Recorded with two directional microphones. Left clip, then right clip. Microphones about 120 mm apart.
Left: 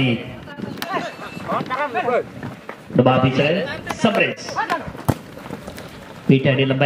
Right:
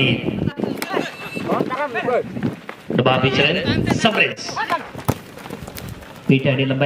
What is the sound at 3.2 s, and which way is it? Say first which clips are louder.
A man's voice: right 2 dB; 20° right (ahead or behind).